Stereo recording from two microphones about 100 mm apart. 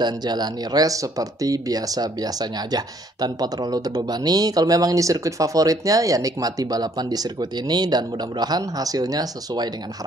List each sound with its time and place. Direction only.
0.0 s speech: 45° right (ahead or behind)